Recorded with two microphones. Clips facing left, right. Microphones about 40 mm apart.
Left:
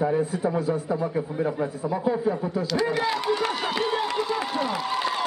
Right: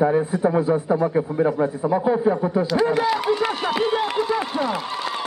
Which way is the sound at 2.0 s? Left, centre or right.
Right.